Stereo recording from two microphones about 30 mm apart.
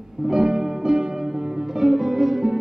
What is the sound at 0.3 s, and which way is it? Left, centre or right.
Music, centre.